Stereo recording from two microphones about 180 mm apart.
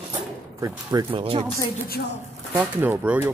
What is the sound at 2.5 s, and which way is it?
Speech, 10° right (ahead or behind).